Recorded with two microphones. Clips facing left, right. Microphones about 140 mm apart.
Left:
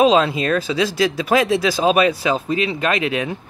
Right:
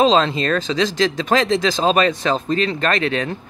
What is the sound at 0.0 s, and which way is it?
Speech, 10° left (ahead or behind).